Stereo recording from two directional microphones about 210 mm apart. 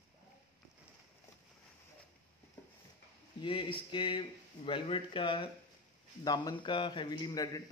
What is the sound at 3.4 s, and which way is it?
A man's voice, 25° left (ahead or behind).